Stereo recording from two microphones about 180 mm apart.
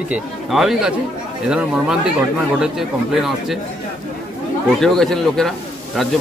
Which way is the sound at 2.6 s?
Centre (ahead or behind).